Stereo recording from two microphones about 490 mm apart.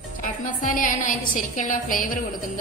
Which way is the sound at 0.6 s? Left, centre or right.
Centre.